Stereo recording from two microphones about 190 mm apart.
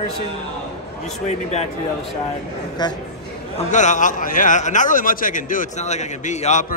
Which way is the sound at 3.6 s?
40° left (ahead or behind).